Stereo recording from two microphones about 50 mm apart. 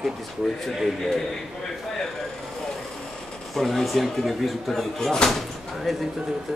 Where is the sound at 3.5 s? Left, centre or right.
Centre.